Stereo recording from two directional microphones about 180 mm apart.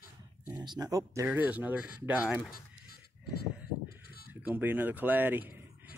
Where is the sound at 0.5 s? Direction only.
25° right (ahead or behind).